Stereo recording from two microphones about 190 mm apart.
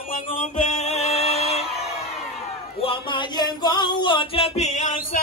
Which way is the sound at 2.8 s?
25° left (ahead or behind).